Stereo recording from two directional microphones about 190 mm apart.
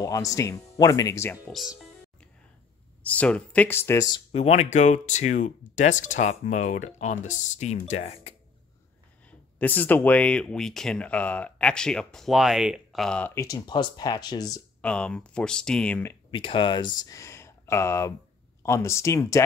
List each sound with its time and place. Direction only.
0.0 s speech: 20° left (ahead or behind)
1.5 s music: centre (ahead or behind)
3.0 s speech: 5° left (ahead or behind)
4.3 s speech: 35° left (ahead or behind)
9.6 s speech: 10° left (ahead or behind)
14.8 s speech: 5° left (ahead or behind)
16.3 s speech: 25° left (ahead or behind)